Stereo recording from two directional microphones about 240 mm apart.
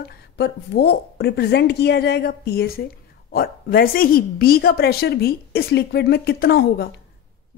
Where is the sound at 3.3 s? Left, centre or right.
Left.